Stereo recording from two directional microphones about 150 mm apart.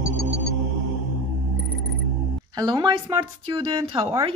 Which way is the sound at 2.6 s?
30° right (ahead or behind).